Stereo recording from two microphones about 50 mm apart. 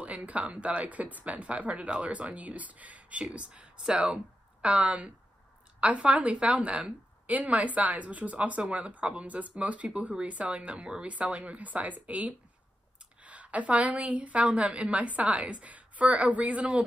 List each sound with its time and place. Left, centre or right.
0.0 s a woman's voice: right